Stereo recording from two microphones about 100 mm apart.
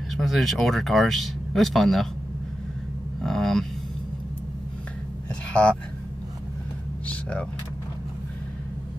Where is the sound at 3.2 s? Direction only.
5° left (ahead or behind).